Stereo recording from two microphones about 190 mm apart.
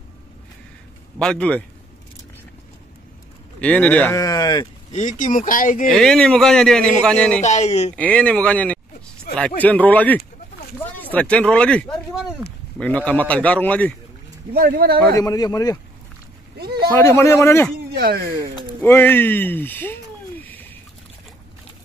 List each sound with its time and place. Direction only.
1.2 s speech: 5° left (ahead or behind)
3.6 s speech: 5° left (ahead or behind)
4.9 s speech: 40° left (ahead or behind)
5.9 s speech: 5° left (ahead or behind)
7.3 s speech: 40° left (ahead or behind)
7.9 s speech: 5° left (ahead or behind)
14.5 s speech: 55° right (ahead or behind)
15.1 s speech: 20° left (ahead or behind)
16.5 s a sound: 55° right (ahead or behind)
16.9 s speech: 15° left (ahead or behind)
17.9 s speech: 55° right (ahead or behind)
18.8 s speech: 10° left (ahead or behind)